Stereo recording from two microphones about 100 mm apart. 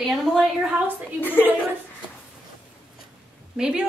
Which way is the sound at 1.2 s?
20° left (ahead or behind).